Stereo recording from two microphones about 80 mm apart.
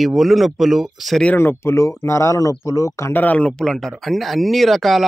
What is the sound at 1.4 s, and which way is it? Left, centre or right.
Speech, left.